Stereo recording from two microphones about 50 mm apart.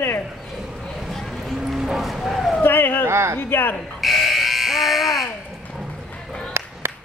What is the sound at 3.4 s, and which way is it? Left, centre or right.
Speech, left.